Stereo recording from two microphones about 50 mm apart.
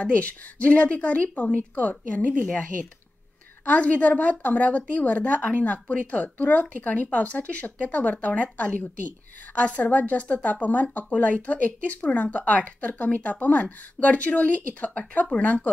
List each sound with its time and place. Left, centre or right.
0.0 s a woman's voice: left
3.6 s a woman's voice: left